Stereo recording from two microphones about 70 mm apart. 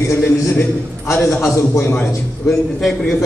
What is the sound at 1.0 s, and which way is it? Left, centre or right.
Speech, left.